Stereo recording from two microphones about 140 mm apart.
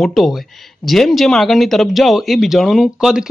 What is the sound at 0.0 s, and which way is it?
Speech, centre (ahead or behind).